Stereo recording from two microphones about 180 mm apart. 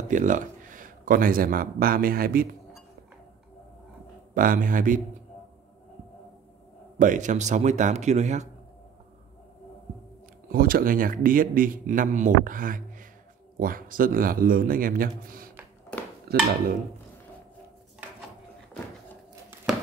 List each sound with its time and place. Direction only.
0.1 s speech: 45° right (ahead or behind)
4.3 s a man's voice: 50° right (ahead or behind)
7.0 s a man's voice: 45° right (ahead or behind)
10.5 s a man's voice: 55° right (ahead or behind)
16.3 s dishes: 60° right (ahead or behind)